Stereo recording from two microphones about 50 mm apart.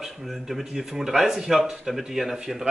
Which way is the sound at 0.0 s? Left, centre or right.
Centre.